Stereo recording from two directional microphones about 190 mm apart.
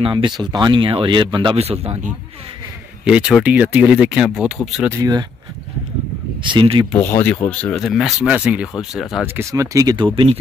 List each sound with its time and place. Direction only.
0.0 s speech: 25° right (ahead or behind)
3.1 s speech: 5° right (ahead or behind)
4.8 s speech: 15° right (ahead or behind)
6.4 s speech: 25° right (ahead or behind)
6.9 s speech: 10° left (ahead or behind)
9.4 s speech: 15° right (ahead or behind)